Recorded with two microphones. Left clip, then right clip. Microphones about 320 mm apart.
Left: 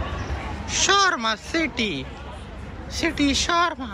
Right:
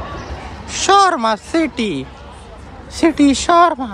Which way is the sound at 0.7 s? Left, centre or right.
Centre.